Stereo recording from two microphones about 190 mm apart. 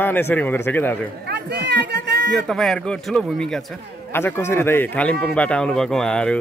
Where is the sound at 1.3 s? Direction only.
60° right (ahead or behind).